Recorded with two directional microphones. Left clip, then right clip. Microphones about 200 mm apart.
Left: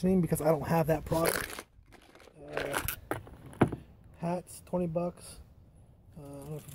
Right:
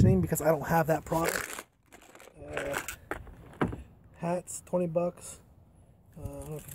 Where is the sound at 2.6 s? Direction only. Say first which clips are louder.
Left 1 dB; 45° left (ahead or behind).